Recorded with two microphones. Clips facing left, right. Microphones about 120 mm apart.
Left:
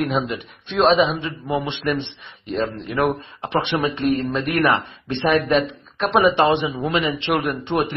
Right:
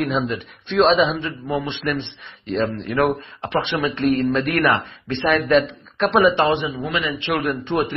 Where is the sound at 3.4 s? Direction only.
20° left (ahead or behind).